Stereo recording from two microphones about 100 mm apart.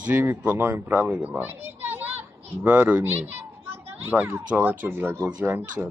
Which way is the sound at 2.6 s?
20° right (ahead or behind).